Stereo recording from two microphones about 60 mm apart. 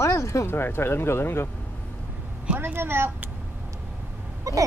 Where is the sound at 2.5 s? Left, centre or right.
Right.